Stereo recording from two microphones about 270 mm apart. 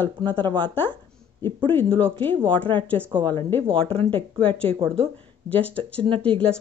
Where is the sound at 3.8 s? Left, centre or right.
Right.